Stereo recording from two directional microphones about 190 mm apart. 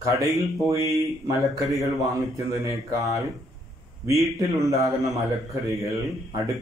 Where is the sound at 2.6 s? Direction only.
15° right (ahead or behind).